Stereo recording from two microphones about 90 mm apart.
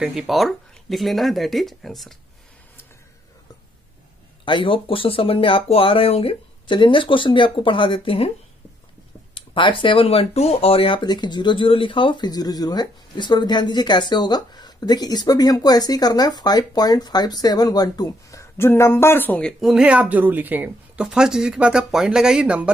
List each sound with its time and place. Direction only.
0.0 s speech: 5° right (ahead or behind)
4.5 s speech: 70° left (ahead or behind)
9.3 s speech: 70° left (ahead or behind); by 19.4 s 20° left (ahead or behind)
19.8 s speech: 15° right (ahead or behind)